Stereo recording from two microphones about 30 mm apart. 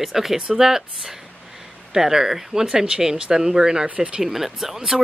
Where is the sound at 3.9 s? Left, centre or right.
Right.